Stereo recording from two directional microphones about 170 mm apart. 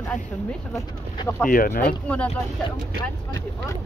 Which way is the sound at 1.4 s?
55° left (ahead or behind).